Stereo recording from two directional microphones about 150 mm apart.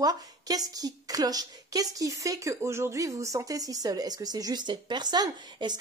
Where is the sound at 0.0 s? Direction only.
25° right (ahead or behind).